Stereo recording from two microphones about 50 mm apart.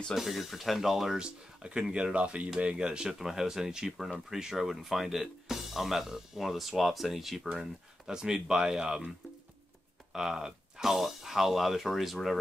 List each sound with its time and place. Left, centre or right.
0.1 s speech: centre
1.6 s speech: centre
10.1 s speech: centre